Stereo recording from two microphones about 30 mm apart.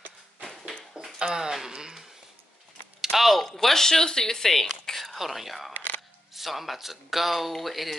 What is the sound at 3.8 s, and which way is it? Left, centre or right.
Speech, centre.